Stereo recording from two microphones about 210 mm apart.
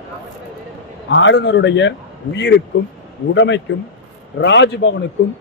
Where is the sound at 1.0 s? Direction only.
60° left (ahead or behind).